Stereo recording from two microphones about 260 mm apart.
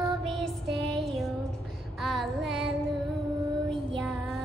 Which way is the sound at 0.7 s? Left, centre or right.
Centre.